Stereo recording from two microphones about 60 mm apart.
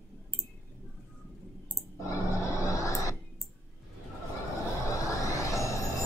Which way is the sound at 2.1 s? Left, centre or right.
Left.